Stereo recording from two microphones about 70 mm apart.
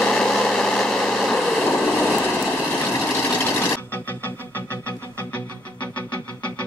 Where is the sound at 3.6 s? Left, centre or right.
Left.